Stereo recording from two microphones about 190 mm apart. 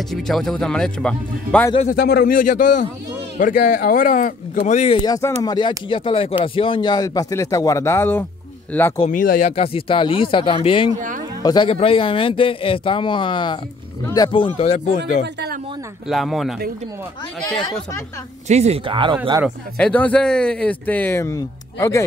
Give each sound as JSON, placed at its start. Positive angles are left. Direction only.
{"t": 0.1, "sound": "speech", "side_deg": 0}
{"t": 1.9, "sound": "speech", "side_deg": 50}
{"t": 9.1, "sound": "speech", "side_deg": 45}
{"t": 9.6, "sound": "speech", "side_deg": 30}
{"t": 11.0, "sound": "a sound", "side_deg": -45}
{"t": 11.4, "sound": "speech", "side_deg": 25}
{"t": 16.1, "sound": "speech", "side_deg": 0}
{"t": 18.5, "sound": "speech", "side_deg": -35}
{"t": 19.8, "sound": "speech", "side_deg": 5}